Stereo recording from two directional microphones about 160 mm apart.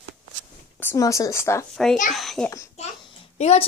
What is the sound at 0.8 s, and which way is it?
Speech, 15° left (ahead or behind).